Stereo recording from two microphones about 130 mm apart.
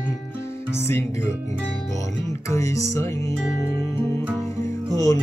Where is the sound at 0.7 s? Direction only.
20° left (ahead or behind).